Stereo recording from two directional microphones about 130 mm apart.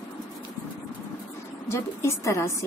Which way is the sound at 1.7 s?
20° left (ahead or behind).